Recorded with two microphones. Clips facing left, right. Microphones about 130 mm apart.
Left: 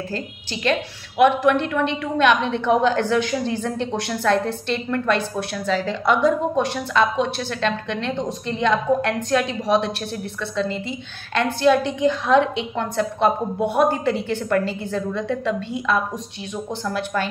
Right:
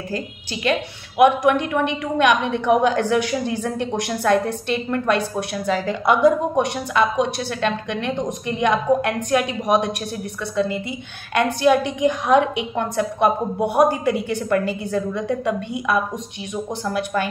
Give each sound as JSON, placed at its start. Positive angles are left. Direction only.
{"t": 0.7, "sound": "a woman's voice", "side_deg": -15}